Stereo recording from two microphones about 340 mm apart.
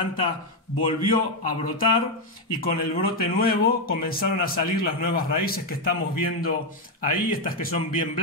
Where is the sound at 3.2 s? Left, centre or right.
Left.